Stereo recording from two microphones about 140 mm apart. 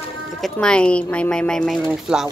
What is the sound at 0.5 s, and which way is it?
Speech, 5° left (ahead or behind).